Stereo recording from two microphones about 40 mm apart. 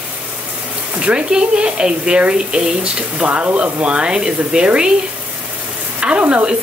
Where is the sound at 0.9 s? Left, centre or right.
Right.